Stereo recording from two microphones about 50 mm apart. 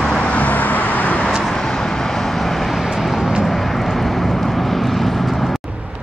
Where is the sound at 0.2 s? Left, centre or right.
Left.